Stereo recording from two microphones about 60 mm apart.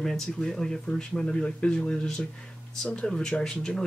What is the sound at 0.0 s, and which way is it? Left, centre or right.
Speech, centre.